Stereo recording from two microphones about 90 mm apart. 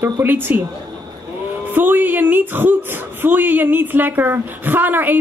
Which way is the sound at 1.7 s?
20° right (ahead or behind).